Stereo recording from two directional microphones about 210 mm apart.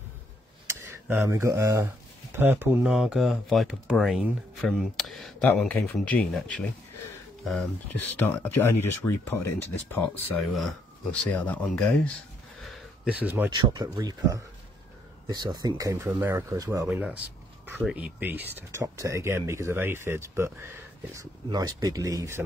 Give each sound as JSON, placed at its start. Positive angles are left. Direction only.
{"t": 0.7, "sound": "tick", "side_deg": -10}
{"t": 1.2, "sound": "speech", "side_deg": -15}
{"t": 6.6, "sound": "a sound", "side_deg": 0}
{"t": 8.1, "sound": "speech", "side_deg": 10}
{"t": 12.6, "sound": "a sound", "side_deg": 0}
{"t": 13.6, "sound": "speech", "side_deg": -20}